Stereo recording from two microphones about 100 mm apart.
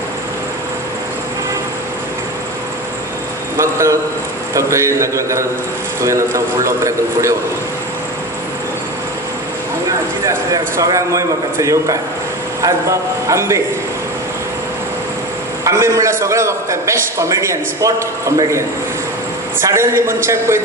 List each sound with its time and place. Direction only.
3.5 s a man's voice: 30° right (ahead or behind)
9.8 s a man's voice: 35° right (ahead or behind)
13.3 s a man's voice: 30° right (ahead or behind)
15.6 s a man's voice: 30° right (ahead or behind)
19.6 s a man's voice: 25° right (ahead or behind)